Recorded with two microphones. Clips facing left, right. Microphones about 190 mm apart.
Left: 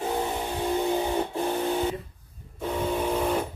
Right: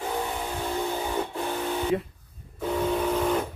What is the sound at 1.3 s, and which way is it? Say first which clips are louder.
Printer: left 3 dB; 25° left (ahead or behind).